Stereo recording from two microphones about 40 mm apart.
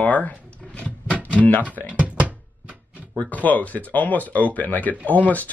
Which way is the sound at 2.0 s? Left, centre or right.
Right.